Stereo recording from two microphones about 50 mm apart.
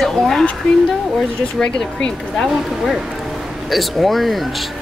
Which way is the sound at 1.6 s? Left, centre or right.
Centre.